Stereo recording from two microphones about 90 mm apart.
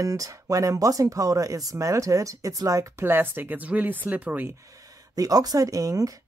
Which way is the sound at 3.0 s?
25° right (ahead or behind).